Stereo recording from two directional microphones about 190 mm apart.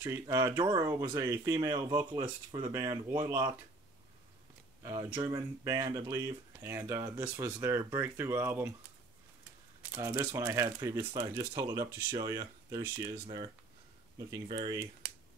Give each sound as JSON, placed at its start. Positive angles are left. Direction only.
{"t": 0.0, "sound": "speech", "side_deg": -15}
{"t": 4.8, "sound": "speech", "side_deg": -20}
{"t": 9.9, "sound": "speech", "side_deg": -15}